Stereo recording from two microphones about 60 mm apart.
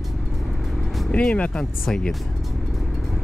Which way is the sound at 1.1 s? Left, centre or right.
Centre.